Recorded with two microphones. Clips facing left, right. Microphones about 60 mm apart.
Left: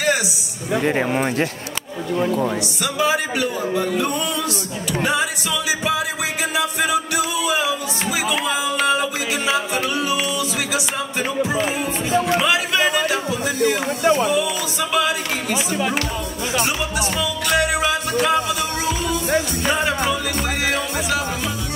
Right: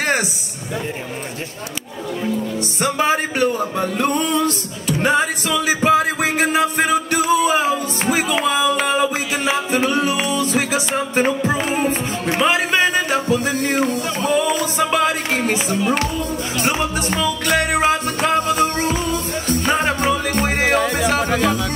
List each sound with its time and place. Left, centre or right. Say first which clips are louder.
2.8 s music: right 3 dB; right
8.7 s a sound: even; right
9.5 s music: right 4 dB; right
21.3 s music: right 8 dB; right